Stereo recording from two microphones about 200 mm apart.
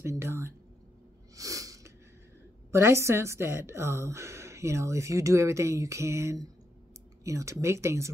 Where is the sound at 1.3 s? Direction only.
15° right (ahead or behind).